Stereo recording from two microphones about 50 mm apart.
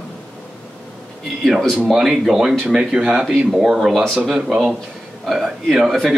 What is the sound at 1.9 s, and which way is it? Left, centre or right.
Speech, centre.